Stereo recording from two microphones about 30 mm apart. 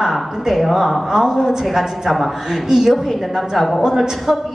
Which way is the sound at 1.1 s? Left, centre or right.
Centre.